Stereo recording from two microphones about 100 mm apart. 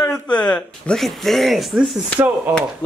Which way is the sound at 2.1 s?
15° right (ahead or behind).